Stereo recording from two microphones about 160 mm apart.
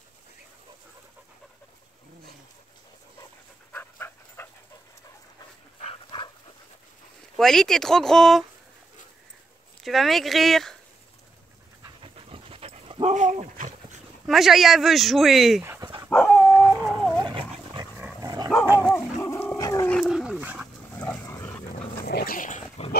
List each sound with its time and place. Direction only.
3.7 s dog: 15° left (ahead or behind)
5.8 s dog: 35° left (ahead or behind)
7.3 s speech: 5° left (ahead or behind)
9.8 s speech: centre (ahead or behind)
12.0 s dog: 35° right (ahead or behind)
14.2 s speech: centre (ahead or behind)
16.1 s dog: 5° left (ahead or behind)
16.5 s howl: centre (ahead or behind)
17.2 s dog: 30° right (ahead or behind)
19.1 s dog: 20° left (ahead or behind)
19.9 s dog: centre (ahead or behind)
20.9 s dog: 10° left (ahead or behind)
22.0 s dog: 70° left (ahead or behind)
22.8 s pig: 40° left (ahead or behind)